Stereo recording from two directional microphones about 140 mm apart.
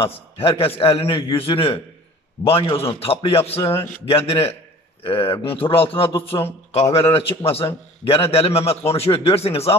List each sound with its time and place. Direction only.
0.0 s a man's voice: 40° left (ahead or behind)